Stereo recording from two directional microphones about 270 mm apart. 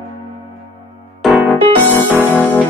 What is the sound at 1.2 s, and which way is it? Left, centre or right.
Keyboard, centre.